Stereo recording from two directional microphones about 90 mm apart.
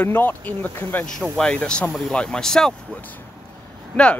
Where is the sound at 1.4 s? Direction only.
10° left (ahead or behind).